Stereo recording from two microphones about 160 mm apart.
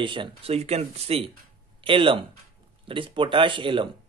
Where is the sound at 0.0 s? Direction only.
30° right (ahead or behind).